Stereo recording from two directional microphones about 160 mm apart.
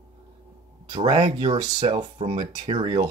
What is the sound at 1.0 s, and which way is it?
Speech, 45° right (ahead or behind).